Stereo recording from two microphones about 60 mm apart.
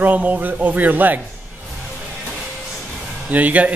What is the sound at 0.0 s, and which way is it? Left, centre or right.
Speech, right.